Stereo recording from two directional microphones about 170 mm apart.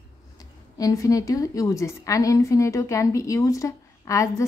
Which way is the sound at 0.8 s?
20° left (ahead or behind).